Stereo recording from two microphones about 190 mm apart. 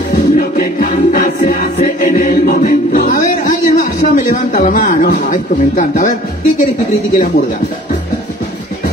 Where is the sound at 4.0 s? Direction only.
45° left (ahead or behind).